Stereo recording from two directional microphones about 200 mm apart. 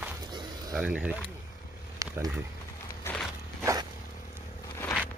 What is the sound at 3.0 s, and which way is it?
Walk, 5° left (ahead or behind).